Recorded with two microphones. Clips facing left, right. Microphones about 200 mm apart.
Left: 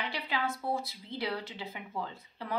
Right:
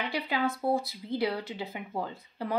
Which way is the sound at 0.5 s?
35° right (ahead or behind).